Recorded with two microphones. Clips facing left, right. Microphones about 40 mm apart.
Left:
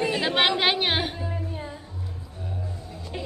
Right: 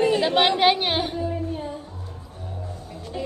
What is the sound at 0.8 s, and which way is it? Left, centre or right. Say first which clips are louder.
Music: right 1 dB; left.